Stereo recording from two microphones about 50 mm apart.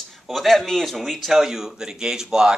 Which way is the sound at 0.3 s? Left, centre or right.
Centre.